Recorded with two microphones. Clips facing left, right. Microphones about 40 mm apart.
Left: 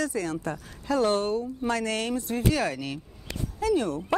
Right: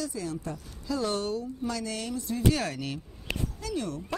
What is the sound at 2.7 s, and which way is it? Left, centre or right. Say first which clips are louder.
Speech: left 1 dB; left.